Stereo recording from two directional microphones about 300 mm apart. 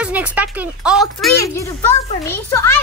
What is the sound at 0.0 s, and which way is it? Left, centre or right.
A child's voice, centre.